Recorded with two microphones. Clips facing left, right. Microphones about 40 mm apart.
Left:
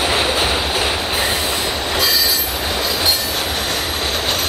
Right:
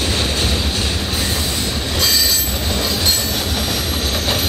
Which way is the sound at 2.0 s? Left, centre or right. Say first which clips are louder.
Even; centre.